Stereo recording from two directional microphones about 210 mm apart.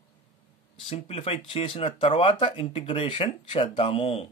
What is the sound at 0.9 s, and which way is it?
Speech, 25° left (ahead or behind).